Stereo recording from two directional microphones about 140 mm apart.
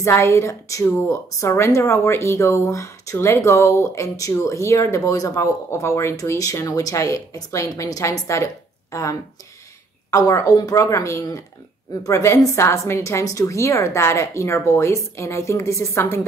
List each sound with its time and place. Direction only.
0.0 s a woman's voice: 20° left (ahead or behind)
10.1 s a woman's voice: 25° left (ahead or behind)